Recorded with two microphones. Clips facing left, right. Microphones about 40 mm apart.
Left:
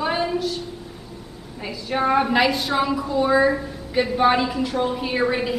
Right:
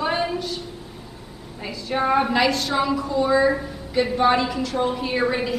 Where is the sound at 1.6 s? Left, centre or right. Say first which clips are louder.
Left 1 dB; centre.